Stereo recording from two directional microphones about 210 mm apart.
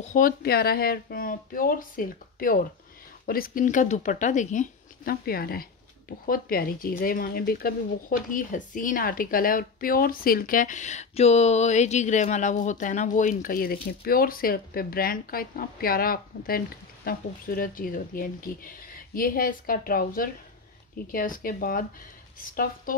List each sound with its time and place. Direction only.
0.1 s speech: 45° left (ahead or behind)